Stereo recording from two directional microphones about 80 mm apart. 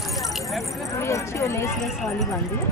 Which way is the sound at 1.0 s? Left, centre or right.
Left.